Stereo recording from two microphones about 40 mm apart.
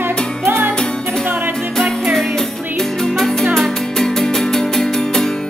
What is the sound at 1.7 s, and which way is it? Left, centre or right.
Music, centre.